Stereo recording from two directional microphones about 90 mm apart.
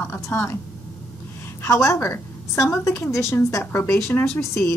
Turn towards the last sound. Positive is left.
turn(degrees=35)  # may be behind; listen again after turning